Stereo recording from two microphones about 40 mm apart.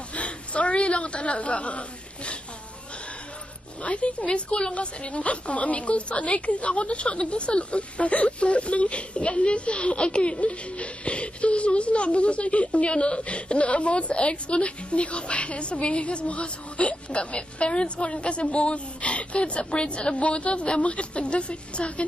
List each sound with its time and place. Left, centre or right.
0.1 s a sound: left
3.8 s a woman's voice: left
4.7 s a woman's voice: left